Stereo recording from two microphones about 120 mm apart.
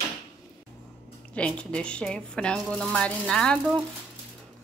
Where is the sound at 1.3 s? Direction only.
10° left (ahead or behind).